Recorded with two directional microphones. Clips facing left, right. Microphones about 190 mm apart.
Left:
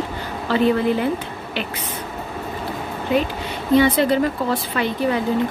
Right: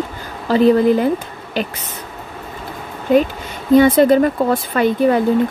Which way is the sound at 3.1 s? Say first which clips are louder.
Right 7 dB; 50° right (ahead or behind).